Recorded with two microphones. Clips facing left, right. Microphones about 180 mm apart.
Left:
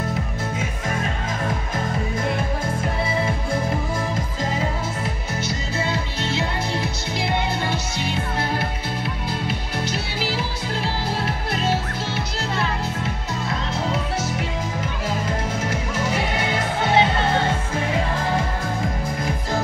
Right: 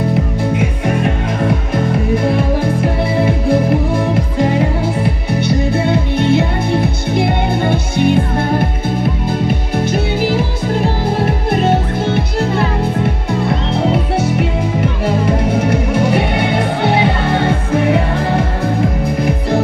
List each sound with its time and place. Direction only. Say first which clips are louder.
0.6 s music: right 10 dB; 70° right (ahead or behind)
9.8 s music: right 12 dB; 50° right (ahead or behind)